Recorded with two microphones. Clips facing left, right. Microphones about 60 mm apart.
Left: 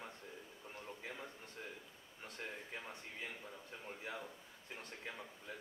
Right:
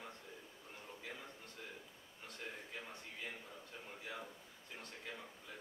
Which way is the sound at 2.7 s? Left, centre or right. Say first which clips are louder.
Left 1 dB; left.